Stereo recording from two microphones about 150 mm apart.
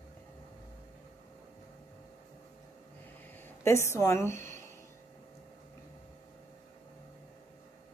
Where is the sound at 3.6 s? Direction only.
20° left (ahead or behind).